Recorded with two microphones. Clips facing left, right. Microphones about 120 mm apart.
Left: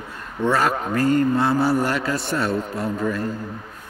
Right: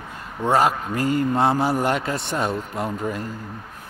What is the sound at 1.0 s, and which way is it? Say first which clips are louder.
Speech: left 4 dB; 40° left (ahead or behind).